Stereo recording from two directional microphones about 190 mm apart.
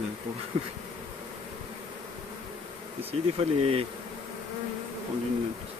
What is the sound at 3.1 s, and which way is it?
Bee, 30° right (ahead or behind).